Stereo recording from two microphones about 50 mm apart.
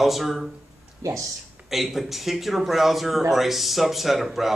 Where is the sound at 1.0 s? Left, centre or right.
Right.